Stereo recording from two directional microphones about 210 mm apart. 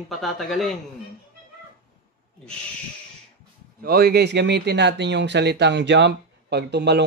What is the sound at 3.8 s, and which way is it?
Speech, 45° right (ahead or behind).